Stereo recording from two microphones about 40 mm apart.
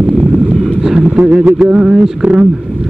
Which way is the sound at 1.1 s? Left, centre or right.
Right.